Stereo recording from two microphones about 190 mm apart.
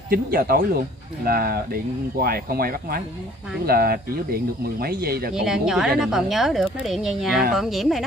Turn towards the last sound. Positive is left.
turn(degrees=0)  # may be behind; listen again after turning